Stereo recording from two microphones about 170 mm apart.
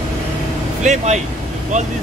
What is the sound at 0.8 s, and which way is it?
Speech, 45° right (ahead or behind).